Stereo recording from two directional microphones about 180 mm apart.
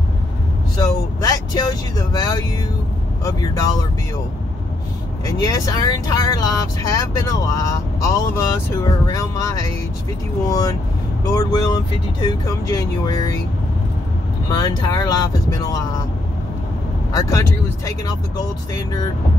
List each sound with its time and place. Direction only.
0.7 s vehicle: 20° left (ahead or behind)
5.2 s speech: 20° left (ahead or behind)
10.4 s speech: 20° left (ahead or behind)
14.6 s speech: 20° left (ahead or behind)
17.2 s speech: 15° left (ahead or behind)